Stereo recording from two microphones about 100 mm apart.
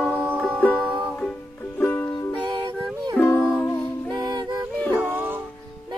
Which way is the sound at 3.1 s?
20° left (ahead or behind).